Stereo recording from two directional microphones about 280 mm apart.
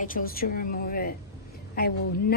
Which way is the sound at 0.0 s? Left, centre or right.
Left.